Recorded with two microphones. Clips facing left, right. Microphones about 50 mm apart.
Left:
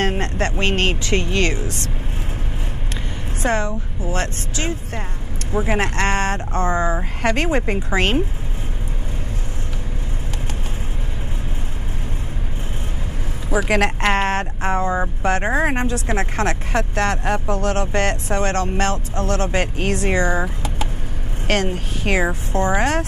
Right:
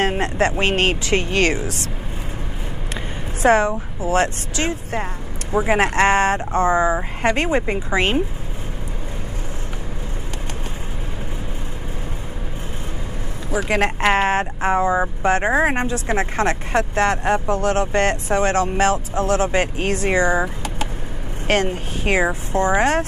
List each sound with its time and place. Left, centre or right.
0.0 s speech: centre
1.3 s speech: right
3.4 s speech: centre
4.6 s speech: right
5.5 s speech: centre
13.5 s speech: centre